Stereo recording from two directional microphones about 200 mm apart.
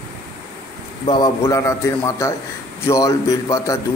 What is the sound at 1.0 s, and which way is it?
A man's voice, 20° left (ahead or behind).